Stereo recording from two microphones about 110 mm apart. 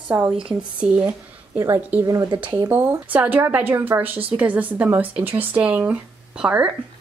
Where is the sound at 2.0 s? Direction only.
35° right (ahead or behind).